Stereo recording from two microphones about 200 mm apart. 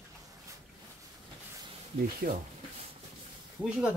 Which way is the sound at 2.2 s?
40° right (ahead or behind).